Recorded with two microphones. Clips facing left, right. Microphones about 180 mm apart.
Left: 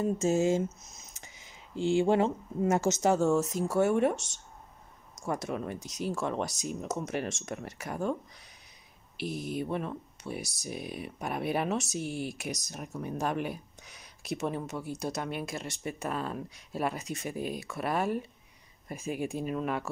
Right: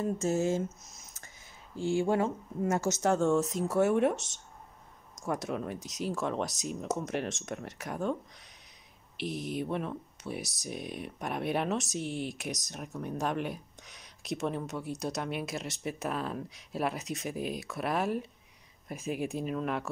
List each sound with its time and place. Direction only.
0.0 s speech: 10° left (ahead or behind)
3.1 s speech: 5° left (ahead or behind)